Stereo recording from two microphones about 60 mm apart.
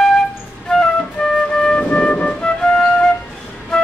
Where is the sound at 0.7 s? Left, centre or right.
Centre.